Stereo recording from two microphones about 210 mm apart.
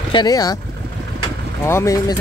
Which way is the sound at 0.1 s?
20° left (ahead or behind).